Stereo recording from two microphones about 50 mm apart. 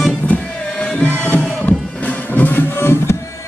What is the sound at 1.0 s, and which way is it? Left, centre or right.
Music, left.